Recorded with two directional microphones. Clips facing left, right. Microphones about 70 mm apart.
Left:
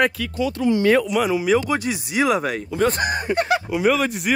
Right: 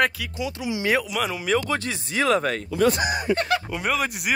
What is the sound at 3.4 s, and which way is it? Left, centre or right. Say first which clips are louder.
Speech: left 4 dB; centre.